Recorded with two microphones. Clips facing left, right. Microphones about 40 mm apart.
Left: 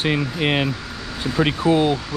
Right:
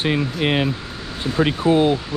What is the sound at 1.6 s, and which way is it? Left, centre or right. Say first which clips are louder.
Speech: right 1 dB; right.